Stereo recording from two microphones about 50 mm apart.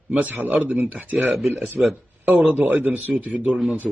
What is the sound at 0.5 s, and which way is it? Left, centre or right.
Speech, right.